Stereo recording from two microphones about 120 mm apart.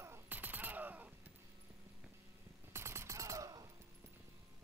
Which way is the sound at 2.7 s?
20° right (ahead or behind).